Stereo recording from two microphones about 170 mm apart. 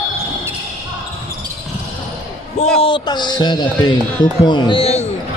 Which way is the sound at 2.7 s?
30° left (ahead or behind).